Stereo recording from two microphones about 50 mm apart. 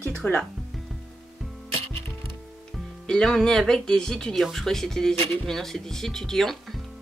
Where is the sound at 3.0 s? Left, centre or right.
Centre.